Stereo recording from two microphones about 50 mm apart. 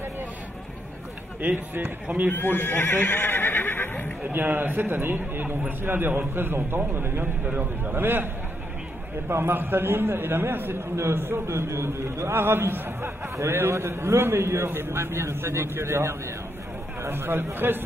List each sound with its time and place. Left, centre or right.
1.4 s a man's voice: right
2.3 s speech: left
4.3 s a man's voice: right
7.4 s a man's voice: right
7.9 s a man's voice: right
9.3 s a man's voice: right
13.4 s a man's voice: right
17.0 s a man's voice: right